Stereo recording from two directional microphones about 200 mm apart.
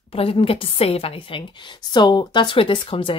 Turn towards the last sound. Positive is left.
turn(degrees=25)  # may be behind; listen again after turning